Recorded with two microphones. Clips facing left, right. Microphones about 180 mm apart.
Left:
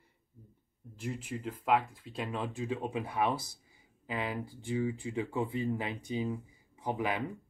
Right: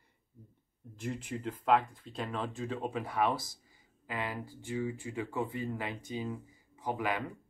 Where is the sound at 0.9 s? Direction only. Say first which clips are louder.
Even; 5° left (ahead or behind).